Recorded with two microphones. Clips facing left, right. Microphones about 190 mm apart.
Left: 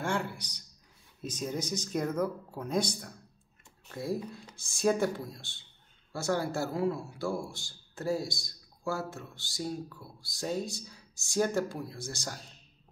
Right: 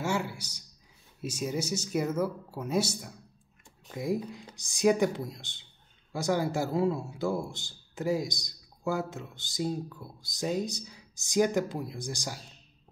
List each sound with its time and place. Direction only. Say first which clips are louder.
0.0 s speech: right 2 dB; 10° right (ahead or behind)